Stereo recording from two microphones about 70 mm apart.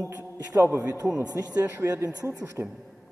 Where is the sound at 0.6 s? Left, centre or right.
Right.